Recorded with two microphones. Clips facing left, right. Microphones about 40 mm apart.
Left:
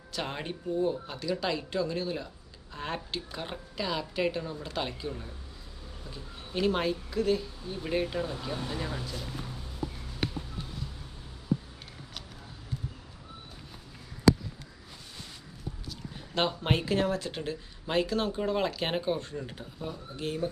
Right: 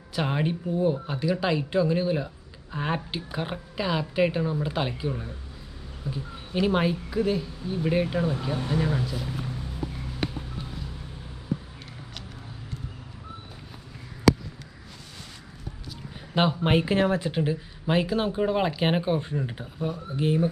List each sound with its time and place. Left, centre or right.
0.1 s speech: centre
10.2 s a sound: centre
16.3 s speech: centre
17.3 s speech: centre